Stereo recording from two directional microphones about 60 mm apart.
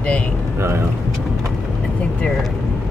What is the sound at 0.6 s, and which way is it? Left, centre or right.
Vehicle, right.